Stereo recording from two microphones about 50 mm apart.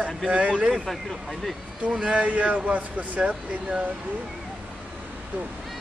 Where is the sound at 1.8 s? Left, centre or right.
Right.